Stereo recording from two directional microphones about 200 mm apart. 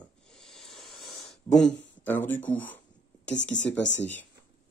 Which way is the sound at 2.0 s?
10° left (ahead or behind).